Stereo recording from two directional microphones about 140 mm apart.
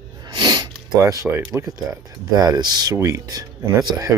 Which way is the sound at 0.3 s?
30° right (ahead or behind).